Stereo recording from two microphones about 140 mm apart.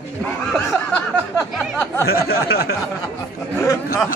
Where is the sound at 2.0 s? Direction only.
90° left.